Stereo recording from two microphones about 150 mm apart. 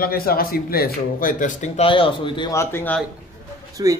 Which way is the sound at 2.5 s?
15° left (ahead or behind).